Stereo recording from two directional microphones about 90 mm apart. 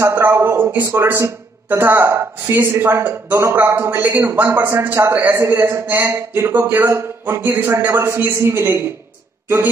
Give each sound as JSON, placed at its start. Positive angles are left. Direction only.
{"t": 0.0, "sound": "a man's voice", "side_deg": -30}